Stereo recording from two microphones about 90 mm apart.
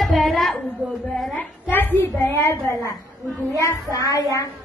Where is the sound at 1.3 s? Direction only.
25° left (ahead or behind).